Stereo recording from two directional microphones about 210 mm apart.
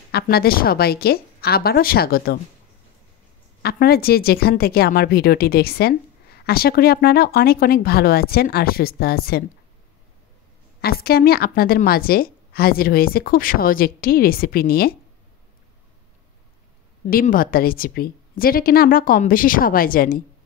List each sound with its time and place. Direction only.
0.1 s a woman's voice: 45° left (ahead or behind)
3.6 s a woman's voice: 45° left (ahead or behind)
10.8 s a woman's voice: 45° left (ahead or behind)
17.0 s a woman's voice: 40° left (ahead or behind)